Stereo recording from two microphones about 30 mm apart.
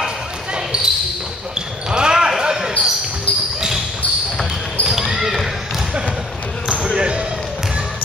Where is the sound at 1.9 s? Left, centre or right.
Right.